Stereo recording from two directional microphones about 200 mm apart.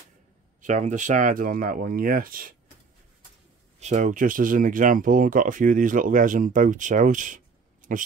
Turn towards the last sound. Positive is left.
turn(degrees=-40)  # may be behind; listen again after turning